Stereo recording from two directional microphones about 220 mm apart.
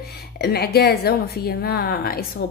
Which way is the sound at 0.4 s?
45° left (ahead or behind).